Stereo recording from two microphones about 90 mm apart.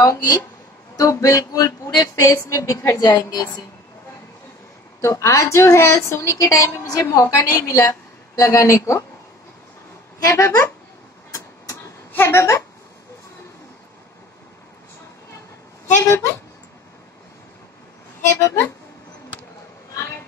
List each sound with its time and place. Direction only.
0.0 s a woman's voice: 35° left (ahead or behind)
3.0 s a woman's voice: 50° left (ahead or behind)
5.0 s a woman's voice: 35° left (ahead or behind)
10.2 s a woman's voice: 35° left (ahead or behind)
11.3 s vehicle: 40° left (ahead or behind)
12.1 s a sound: 25° left (ahead or behind)
16.1 s a woman's voice: 30° left (ahead or behind)
18.3 s a woman's voice: 30° left (ahead or behind)